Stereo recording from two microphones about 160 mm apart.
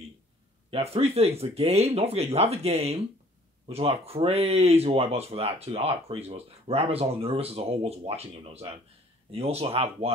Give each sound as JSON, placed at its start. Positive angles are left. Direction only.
{"t": 0.7, "sound": "speech", "side_deg": -40}